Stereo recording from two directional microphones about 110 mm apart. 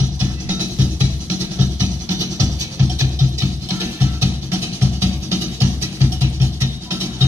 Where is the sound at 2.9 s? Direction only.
25° right (ahead or behind).